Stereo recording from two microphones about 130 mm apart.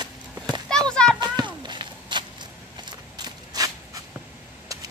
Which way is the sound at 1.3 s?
35° right (ahead or behind).